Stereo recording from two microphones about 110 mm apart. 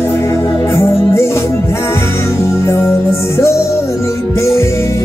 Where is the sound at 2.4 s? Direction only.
25° left (ahead or behind).